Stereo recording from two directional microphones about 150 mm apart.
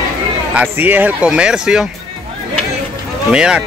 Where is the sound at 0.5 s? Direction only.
10° right (ahead or behind).